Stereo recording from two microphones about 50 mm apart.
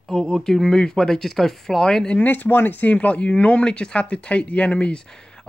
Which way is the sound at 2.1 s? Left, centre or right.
Left.